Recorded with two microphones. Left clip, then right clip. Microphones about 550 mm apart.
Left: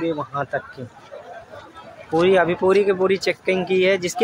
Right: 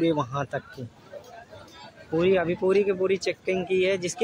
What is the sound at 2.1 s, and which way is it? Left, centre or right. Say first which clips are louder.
A man's voice: left 6 dB; right.